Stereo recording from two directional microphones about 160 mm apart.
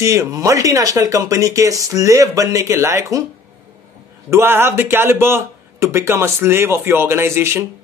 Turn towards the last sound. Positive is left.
turn(degrees=-15)  # may be behind; listen again after turning